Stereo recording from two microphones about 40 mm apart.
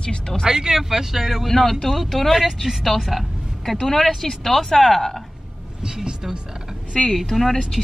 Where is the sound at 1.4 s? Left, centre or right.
Centre.